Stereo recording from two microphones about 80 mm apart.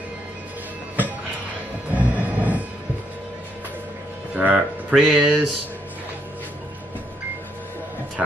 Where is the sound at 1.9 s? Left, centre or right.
Right.